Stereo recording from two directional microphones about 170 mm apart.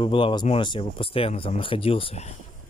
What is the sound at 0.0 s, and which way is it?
Speech, 30° left (ahead or behind).